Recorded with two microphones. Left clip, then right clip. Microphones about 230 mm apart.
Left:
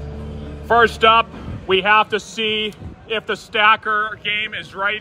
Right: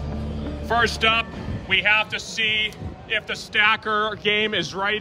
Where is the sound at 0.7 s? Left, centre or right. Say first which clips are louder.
Left 7 dB; centre.